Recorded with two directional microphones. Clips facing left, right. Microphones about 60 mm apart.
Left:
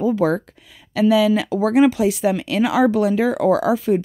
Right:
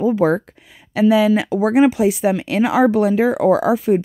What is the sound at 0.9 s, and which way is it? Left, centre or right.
Speech, right.